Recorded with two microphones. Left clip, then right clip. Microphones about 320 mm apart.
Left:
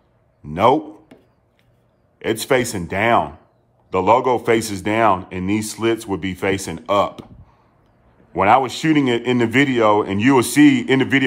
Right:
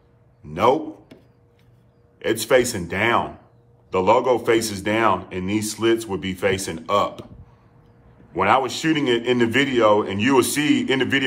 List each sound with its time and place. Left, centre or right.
0.4 s a sound: left
2.1 s speech: left
8.4 s speech: left